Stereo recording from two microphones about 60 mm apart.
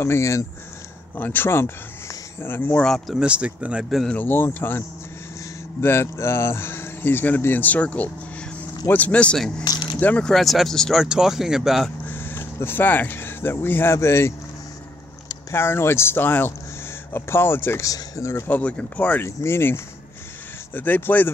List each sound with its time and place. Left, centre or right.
0.0 s speech: left
1.1 s speech: left
3.2 s speech: centre
4.1 s speech: left
10.2 s speech: centre
11.0 s speech: centre
12.1 s speech: left
13.9 s speech: left
15.5 s speech: left
17.8 s speech: left
18.5 s speech: left
19.2 s speech: left
20.7 s speech: left